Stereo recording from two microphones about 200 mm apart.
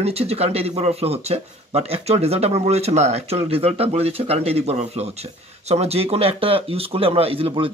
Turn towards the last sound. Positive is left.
turn(degrees=-30)  # may be behind; listen again after turning